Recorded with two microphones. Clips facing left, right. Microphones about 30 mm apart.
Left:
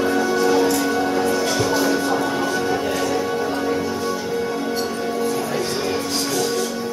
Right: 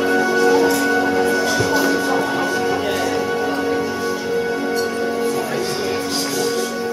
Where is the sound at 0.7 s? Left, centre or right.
Centre.